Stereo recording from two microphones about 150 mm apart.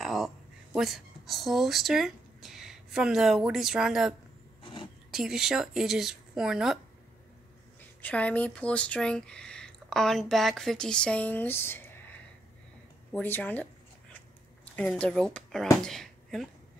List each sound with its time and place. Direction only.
0.0 s a sound: centre (ahead or behind)
0.7 s speech: centre (ahead or behind)
5.1 s speech: centre (ahead or behind)
8.0 s speech: 10° left (ahead or behind)
14.8 s speech: 10° left (ahead or behind)